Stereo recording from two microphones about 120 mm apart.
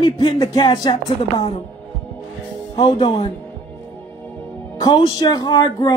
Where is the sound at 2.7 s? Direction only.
40° left (ahead or behind).